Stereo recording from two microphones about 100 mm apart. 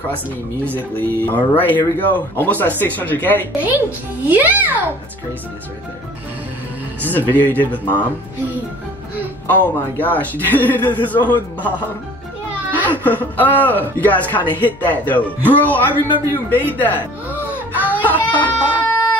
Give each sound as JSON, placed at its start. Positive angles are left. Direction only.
{"t": 0.7, "sound": "a man's voice", "side_deg": 20}
{"t": 3.5, "sound": "a child's voice", "side_deg": -15}
{"t": 7.2, "sound": "a man's voice", "side_deg": 15}
{"t": 9.5, "sound": "a man's voice", "side_deg": 15}
{"t": 12.8, "sound": "a man's voice", "side_deg": 15}
{"t": 17.8, "sound": "a sound", "side_deg": 15}